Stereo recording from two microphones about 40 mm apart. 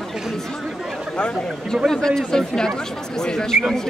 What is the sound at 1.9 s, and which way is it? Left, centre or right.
Speech, centre.